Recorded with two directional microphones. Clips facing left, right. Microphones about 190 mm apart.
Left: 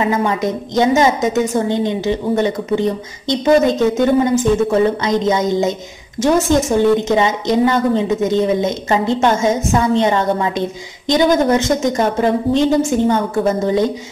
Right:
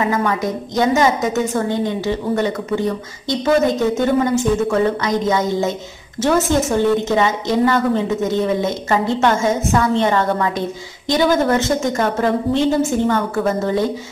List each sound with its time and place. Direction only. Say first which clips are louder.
0.0 s a woman's voice: left 2 dB; 25° left (ahead or behind)